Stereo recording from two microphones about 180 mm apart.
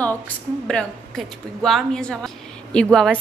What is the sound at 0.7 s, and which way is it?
A woman's voice, 5° left (ahead or behind).